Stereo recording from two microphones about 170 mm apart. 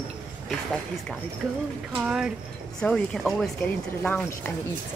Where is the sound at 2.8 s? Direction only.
5° left (ahead or behind).